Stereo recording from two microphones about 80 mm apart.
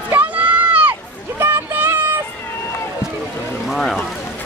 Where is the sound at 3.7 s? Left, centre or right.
Centre.